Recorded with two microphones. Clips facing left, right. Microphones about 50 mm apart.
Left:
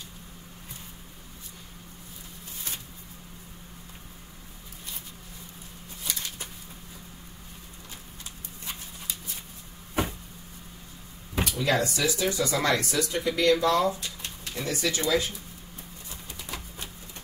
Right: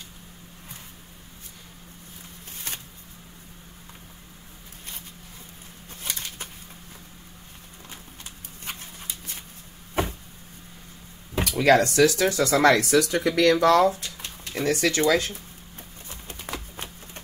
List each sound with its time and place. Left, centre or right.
6.0 s bird: right
11.5 s speech: right
16.1 s a sound: right